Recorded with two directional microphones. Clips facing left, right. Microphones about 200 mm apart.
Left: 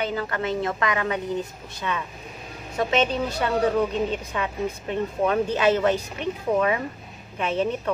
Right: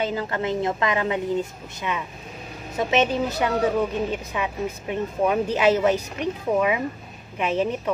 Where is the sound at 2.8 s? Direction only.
20° right (ahead or behind).